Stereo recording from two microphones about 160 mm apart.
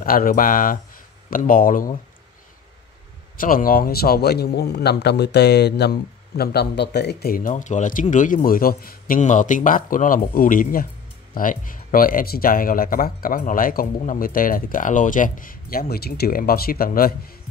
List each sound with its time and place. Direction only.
0.0 s a man's voice: 65° left (ahead or behind)
3.3 s a man's voice: 60° left (ahead or behind)